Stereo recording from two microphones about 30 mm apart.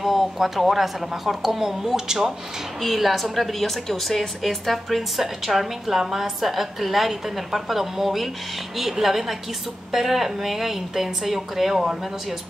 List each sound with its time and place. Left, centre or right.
0.0 s a woman's voice: centre
2.8 s a woman's voice: centre
4.9 s a woman's voice: centre
5.9 s a woman's voice: centre